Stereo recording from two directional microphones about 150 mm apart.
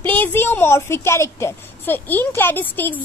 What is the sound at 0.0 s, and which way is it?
Speech, 10° left (ahead or behind).